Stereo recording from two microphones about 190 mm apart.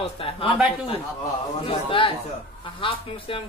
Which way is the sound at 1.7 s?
30° left (ahead or behind).